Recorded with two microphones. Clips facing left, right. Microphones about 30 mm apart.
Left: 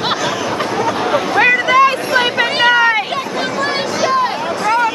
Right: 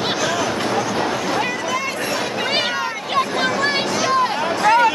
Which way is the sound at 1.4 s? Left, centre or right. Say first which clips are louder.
Left 11 dB; left.